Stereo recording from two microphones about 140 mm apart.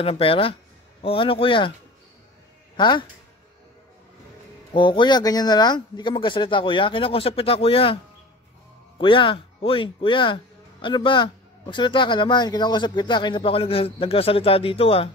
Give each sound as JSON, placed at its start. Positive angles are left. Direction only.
{"t": 0.0, "sound": "speech", "side_deg": 40}
{"t": 2.8, "sound": "speech", "side_deg": 35}
{"t": 4.7, "sound": "speech", "side_deg": 35}